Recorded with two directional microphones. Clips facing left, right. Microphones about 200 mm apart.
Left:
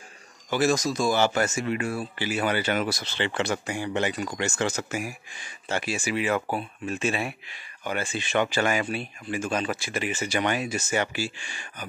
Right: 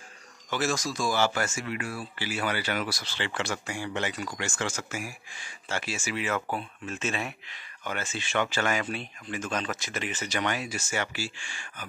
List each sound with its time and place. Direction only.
0.5 s speech: 15° left (ahead or behind)